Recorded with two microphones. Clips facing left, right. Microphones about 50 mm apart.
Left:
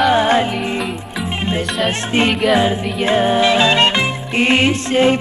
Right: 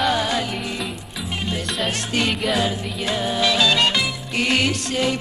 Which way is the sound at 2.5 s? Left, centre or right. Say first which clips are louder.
Left 7 dB; left.